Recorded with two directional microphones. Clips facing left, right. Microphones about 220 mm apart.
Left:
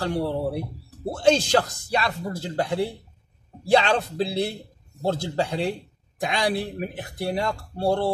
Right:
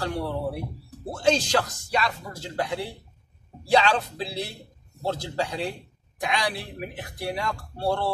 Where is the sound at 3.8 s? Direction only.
35° left (ahead or behind).